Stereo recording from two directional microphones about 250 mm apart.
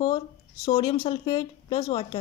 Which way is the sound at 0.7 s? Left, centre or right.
Centre.